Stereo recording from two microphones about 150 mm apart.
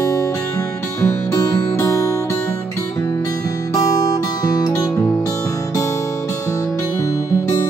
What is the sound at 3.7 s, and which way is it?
Music, 25° left (ahead or behind).